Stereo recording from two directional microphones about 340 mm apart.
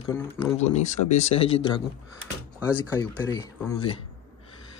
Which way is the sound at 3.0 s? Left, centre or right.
Centre.